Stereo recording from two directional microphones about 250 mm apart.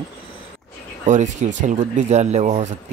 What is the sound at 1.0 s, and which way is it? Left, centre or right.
Speech, right.